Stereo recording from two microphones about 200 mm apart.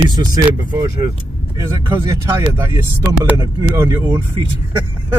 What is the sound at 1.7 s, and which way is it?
Speech, 15° right (ahead or behind).